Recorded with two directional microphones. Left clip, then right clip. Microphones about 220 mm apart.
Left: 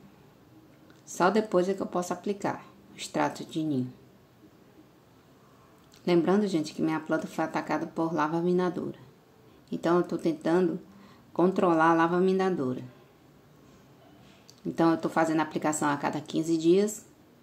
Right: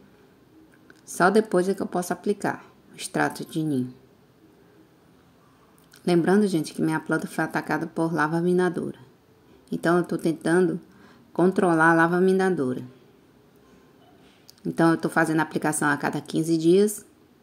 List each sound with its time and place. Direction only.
1.0 s speech: 30° right (ahead or behind)
6.0 s speech: 30° right (ahead or behind)
14.8 s a woman's voice: 30° right (ahead or behind)